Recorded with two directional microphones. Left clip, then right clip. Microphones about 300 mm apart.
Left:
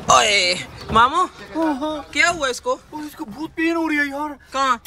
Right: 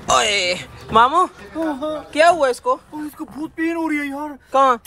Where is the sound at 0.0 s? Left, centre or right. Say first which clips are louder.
Left 2 dB; centre.